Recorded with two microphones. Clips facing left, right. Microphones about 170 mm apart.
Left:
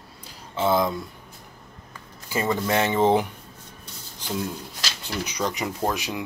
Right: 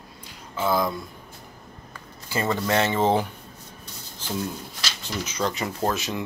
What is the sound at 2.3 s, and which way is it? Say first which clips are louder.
Speech: even; 10° left (ahead or behind).